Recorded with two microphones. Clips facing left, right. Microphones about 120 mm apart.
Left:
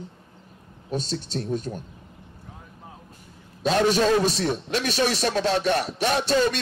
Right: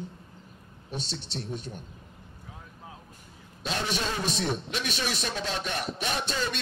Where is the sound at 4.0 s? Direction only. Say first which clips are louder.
Left 12 dB; 90° left.